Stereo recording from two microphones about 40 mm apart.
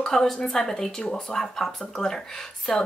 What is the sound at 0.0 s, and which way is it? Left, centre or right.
A woman's voice, centre.